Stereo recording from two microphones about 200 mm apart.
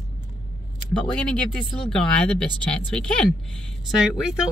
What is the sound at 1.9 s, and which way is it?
Speech, 5° left (ahead or behind).